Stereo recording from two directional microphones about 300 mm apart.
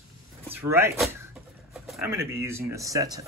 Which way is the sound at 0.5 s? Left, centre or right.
Centre.